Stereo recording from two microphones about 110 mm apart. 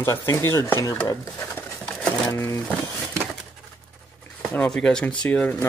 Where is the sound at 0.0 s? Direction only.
25° left (ahead or behind).